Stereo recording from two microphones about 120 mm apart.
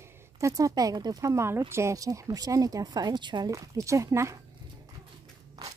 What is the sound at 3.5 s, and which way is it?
Speech, 25° right (ahead or behind).